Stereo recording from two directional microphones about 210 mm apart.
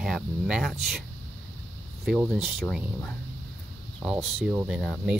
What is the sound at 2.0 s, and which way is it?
Speech, centre (ahead or behind).